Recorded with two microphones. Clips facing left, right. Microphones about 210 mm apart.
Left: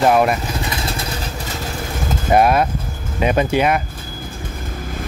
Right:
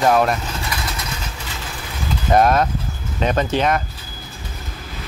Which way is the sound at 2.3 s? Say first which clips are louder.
Left 1 dB; 10° left (ahead or behind).